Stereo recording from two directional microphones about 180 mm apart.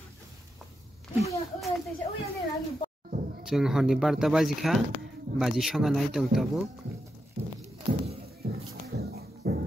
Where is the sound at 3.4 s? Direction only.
Centre (ahead or behind).